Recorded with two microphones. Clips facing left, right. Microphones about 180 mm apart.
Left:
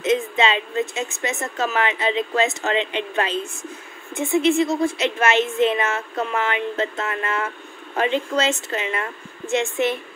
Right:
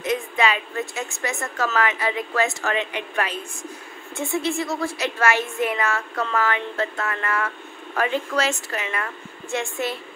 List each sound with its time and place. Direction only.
0.0 s a child's voice: 25° left (ahead or behind)